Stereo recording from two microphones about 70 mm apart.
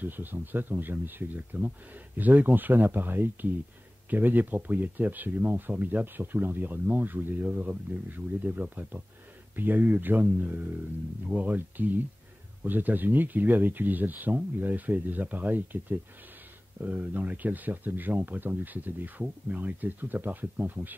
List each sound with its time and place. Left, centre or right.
0.0 s speech: right